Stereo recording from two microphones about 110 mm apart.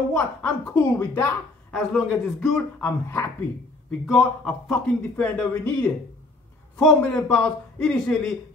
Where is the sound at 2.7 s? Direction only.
20° left (ahead or behind).